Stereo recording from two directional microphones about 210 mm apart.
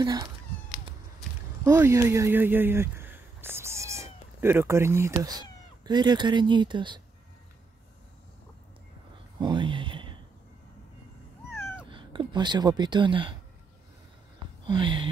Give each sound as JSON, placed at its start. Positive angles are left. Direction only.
{"t": 0.0, "sound": "speech", "side_deg": -20}
{"t": 1.6, "sound": "speech", "side_deg": -10}
{"t": 9.4, "sound": "a sound", "side_deg": -20}
{"t": 11.9, "sound": "speech", "side_deg": -25}
{"t": 14.7, "sound": "speech", "side_deg": -25}